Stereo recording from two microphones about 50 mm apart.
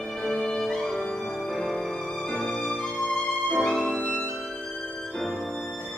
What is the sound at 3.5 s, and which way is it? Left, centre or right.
Music, centre.